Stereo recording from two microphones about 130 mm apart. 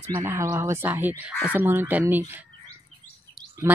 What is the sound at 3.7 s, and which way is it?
Speech, 15° right (ahead or behind).